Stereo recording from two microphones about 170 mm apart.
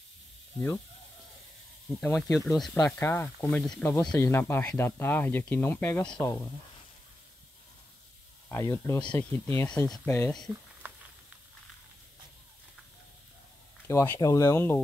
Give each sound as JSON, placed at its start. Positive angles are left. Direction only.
{"t": 2.0, "sound": "speech", "side_deg": 5}
{"t": 8.5, "sound": "speech", "side_deg": 15}
{"t": 9.8, "sound": "speech", "side_deg": 0}
{"t": 10.1, "sound": "speech", "side_deg": 15}
{"t": 10.8, "sound": "a sound", "side_deg": -10}
{"t": 13.8, "sound": "speech", "side_deg": 15}